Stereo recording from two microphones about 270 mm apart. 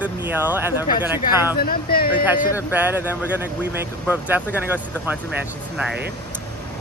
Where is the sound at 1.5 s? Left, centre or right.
Left.